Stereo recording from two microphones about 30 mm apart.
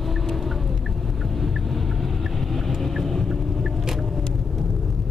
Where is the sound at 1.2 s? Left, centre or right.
Centre.